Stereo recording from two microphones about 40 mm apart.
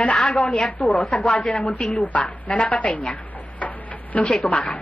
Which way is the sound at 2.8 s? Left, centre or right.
Left.